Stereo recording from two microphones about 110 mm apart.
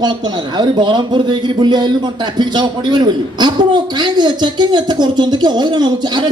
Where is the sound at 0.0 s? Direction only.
45° right (ahead or behind).